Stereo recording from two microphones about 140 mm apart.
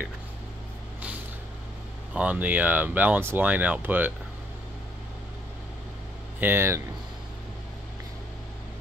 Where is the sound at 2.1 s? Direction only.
10° right (ahead or behind).